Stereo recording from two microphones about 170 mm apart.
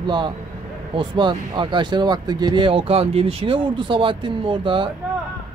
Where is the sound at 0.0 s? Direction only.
25° right (ahead or behind).